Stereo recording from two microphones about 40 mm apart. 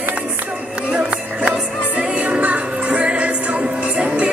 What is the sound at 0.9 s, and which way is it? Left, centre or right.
Music, right.